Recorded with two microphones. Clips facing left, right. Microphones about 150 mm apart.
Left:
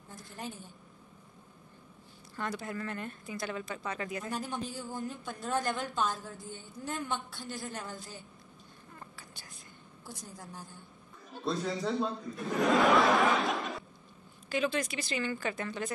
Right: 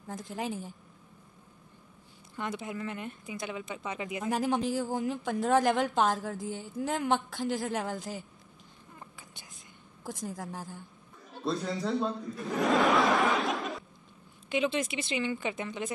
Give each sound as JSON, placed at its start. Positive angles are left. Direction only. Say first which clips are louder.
{"t": 0.1, "sound": "a woman's voice", "louder": "right 8 dB", "side_deg": -90}
{"t": 2.3, "sound": "speech", "louder": "right 1 dB", "side_deg": -20}
{"t": 4.3, "sound": "a woman's voice", "louder": "right 8 dB", "side_deg": -90}
{"t": 10.0, "sound": "a woman's voice", "louder": "right 9 dB", "side_deg": -90}
{"t": 11.4, "sound": "a man's voice", "louder": "right 1 dB", "side_deg": 0}
{"t": 12.7, "sound": "a sound", "louder": "even", "side_deg": 0}
{"t": 14.5, "sound": "speech", "louder": "right 2 dB", "side_deg": -20}